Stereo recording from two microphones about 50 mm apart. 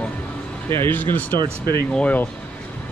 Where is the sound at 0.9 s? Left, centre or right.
Left.